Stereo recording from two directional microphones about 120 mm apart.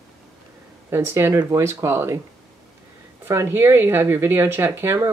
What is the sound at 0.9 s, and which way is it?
Speech, 20° right (ahead or behind).